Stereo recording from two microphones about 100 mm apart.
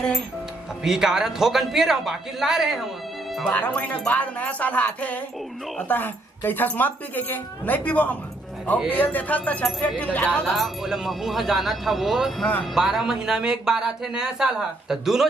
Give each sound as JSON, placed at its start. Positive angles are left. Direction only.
{"t": 0.8, "sound": "speech", "side_deg": -5}
{"t": 3.4, "sound": "speech", "side_deg": 15}
{"t": 10.5, "sound": "speech", "side_deg": 0}